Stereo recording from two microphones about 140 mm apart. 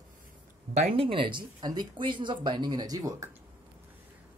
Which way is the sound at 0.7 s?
40° right (ahead or behind).